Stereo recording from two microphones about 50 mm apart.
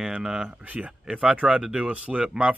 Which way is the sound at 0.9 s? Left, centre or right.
Centre.